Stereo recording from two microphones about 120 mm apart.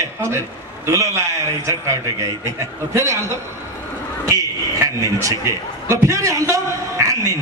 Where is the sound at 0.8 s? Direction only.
25° right (ahead or behind).